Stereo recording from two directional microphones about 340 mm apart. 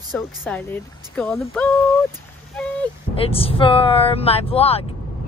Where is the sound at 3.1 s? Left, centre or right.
Centre.